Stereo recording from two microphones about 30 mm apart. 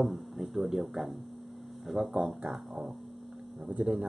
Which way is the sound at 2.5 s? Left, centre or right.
Right.